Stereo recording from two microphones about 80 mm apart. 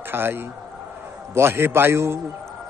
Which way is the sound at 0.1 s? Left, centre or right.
Right.